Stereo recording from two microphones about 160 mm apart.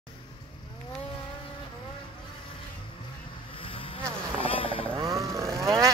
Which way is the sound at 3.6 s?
35° left (ahead or behind).